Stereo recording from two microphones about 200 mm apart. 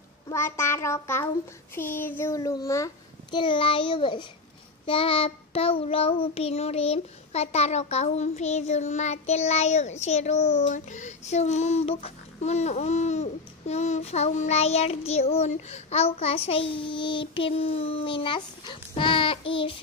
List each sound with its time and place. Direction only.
0.3 s child singing: 15° left (ahead or behind)
1.8 s a child's voice: 10° left (ahead or behind); by 19.8 s 25° left (ahead or behind)